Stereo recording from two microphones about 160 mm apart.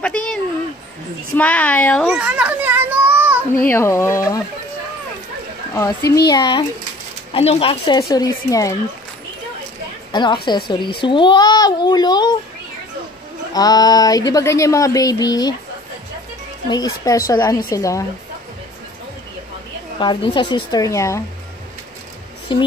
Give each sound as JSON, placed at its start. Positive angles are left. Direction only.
{"t": 0.0, "sound": "a sound", "side_deg": 5}
{"t": 1.3, "sound": "speech", "side_deg": 10}
{"t": 2.0, "sound": "children playing", "side_deg": -5}
{"t": 3.5, "sound": "speech", "side_deg": 15}
{"t": 5.8, "sound": "speech", "side_deg": 20}
{"t": 8.1, "sound": "speech", "side_deg": 20}
{"t": 10.1, "sound": "speech", "side_deg": 30}
{"t": 13.5, "sound": "speech", "side_deg": 25}
{"t": 16.6, "sound": "speech", "side_deg": 25}
{"t": 20.0, "sound": "speech", "side_deg": 30}
{"t": 22.5, "sound": "speech", "side_deg": 30}